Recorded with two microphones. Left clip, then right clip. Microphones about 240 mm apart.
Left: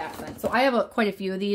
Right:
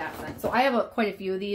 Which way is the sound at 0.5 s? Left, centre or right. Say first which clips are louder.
Left 2 dB; left.